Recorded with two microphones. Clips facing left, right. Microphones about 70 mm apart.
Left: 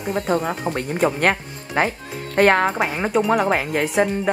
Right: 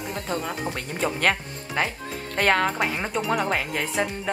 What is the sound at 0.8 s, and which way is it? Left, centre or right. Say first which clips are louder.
Speech: left 8 dB; left.